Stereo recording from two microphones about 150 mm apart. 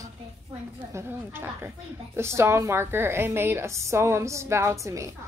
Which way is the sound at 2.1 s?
15° right (ahead or behind).